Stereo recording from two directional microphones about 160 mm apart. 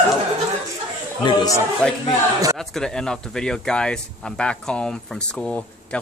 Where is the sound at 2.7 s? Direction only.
5° left (ahead or behind).